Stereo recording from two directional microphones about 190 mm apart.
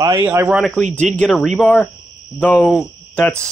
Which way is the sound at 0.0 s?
15° right (ahead or behind).